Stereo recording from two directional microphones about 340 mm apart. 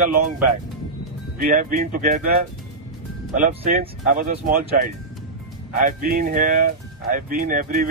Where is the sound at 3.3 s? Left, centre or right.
Right.